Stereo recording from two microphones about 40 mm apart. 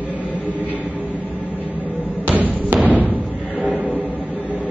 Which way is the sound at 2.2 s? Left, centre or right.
Right.